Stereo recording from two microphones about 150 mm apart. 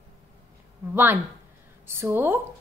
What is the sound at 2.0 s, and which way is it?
Speech, 15° right (ahead or behind).